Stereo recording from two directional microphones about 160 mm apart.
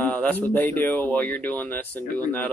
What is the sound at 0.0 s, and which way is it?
Speech, 10° left (ahead or behind).